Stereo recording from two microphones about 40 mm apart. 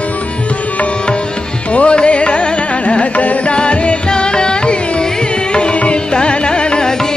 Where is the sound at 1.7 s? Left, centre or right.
Left.